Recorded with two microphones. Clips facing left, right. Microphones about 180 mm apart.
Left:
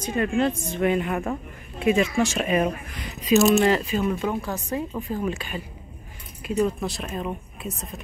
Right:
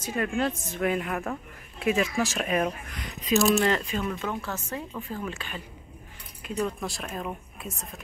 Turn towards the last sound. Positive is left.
turn(degrees=0)  # may be behind; listen again after turning